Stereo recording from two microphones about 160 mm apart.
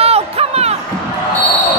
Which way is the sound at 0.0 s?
40° right (ahead or behind).